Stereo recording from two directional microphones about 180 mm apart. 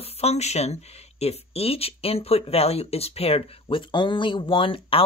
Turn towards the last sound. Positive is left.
turn(degrees=30)  # may be behind; listen again after turning